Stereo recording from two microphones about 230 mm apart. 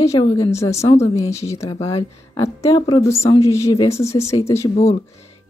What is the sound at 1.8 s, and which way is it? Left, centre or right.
Speech, left.